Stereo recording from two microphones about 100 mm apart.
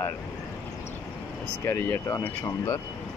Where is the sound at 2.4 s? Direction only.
35° left (ahead or behind).